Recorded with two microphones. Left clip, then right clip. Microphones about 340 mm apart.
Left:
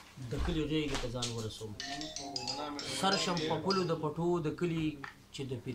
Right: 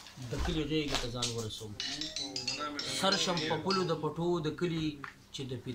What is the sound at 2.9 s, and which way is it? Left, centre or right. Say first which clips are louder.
Speech: right 1 dB; centre.